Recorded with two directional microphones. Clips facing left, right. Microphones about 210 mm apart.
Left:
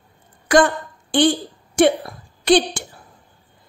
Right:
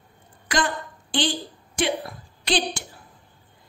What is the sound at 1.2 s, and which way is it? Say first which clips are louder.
Speech: left 10 dB; 55° left (ahead or behind).